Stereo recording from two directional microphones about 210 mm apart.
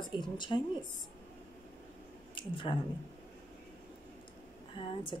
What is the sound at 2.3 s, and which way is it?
Speech, 25° left (ahead or behind).